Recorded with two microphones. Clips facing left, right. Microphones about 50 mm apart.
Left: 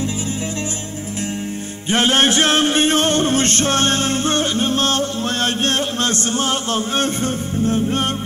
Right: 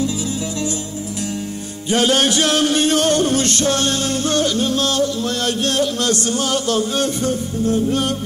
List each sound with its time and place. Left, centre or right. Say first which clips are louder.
1.9 s music: even; left